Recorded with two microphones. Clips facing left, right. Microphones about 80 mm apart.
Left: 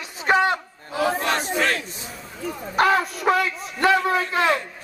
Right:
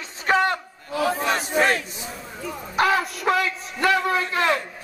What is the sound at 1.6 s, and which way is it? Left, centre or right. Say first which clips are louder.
Battle cry: right 6 dB; right.